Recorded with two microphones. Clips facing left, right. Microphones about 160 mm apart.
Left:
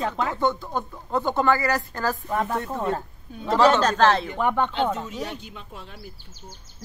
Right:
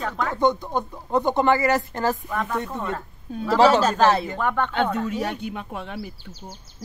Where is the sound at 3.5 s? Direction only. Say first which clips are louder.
Right 2 dB; 5° right (ahead or behind).